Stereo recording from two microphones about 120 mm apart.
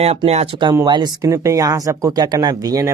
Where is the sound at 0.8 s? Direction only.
35° right (ahead or behind).